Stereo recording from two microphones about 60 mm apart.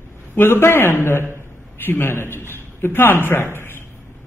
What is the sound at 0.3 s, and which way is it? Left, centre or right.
A man's voice, left.